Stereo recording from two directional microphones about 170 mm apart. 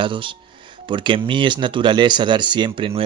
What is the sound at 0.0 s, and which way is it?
Speech, 30° right (ahead or behind).